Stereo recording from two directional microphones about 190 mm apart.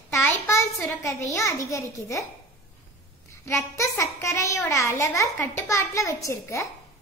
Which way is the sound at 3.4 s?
15° left (ahead or behind).